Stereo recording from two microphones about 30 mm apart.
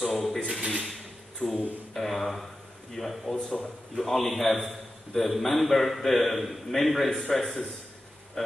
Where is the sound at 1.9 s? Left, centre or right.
Centre.